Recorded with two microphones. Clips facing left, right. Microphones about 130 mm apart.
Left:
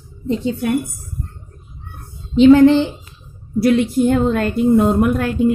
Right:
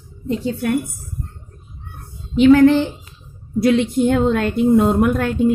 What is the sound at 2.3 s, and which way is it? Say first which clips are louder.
Speech: left 2 dB; 25° left (ahead or behind).